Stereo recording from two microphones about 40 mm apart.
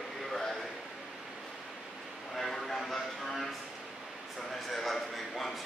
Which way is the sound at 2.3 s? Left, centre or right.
Centre.